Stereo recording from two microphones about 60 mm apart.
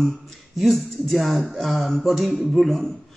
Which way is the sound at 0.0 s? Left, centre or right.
Centre.